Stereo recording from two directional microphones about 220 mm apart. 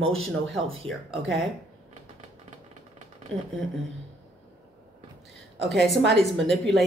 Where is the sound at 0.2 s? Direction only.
Centre (ahead or behind).